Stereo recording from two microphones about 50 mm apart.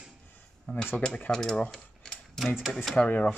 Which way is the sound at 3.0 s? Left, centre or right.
Left.